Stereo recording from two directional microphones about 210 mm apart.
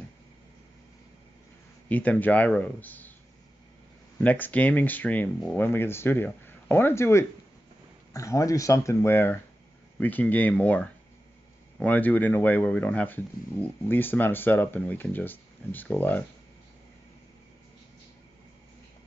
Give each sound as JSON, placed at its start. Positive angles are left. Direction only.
{"t": 1.9, "sound": "speech", "side_deg": 5}
{"t": 4.2, "sound": "speech", "side_deg": 5}